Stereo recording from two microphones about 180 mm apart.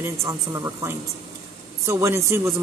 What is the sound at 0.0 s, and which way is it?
Speech, 15° right (ahead or behind).